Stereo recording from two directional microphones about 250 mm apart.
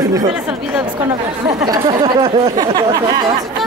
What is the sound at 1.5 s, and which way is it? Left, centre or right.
Speech, centre.